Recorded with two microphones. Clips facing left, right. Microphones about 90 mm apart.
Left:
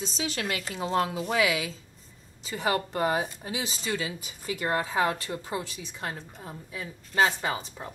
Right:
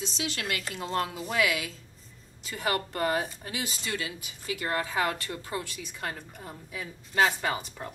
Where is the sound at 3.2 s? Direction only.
Centre (ahead or behind).